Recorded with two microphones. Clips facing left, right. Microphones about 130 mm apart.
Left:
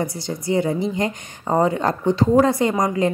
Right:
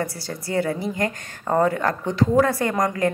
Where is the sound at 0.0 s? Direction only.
20° left (ahead or behind).